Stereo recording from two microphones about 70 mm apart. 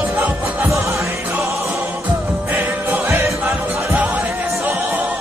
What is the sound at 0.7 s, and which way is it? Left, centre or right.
Music, right.